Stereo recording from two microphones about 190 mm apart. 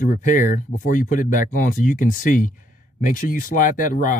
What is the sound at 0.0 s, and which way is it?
Speech, 45° left (ahead or behind).